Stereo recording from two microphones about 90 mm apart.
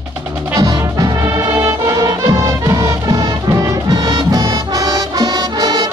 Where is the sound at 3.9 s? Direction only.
50° right (ahead or behind).